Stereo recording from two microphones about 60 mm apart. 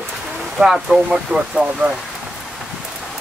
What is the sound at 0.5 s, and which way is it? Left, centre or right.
Speech, centre.